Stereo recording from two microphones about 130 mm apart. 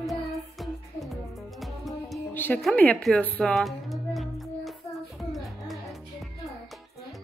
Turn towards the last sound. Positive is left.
turn(degrees=0)  # may be behind; listen again after turning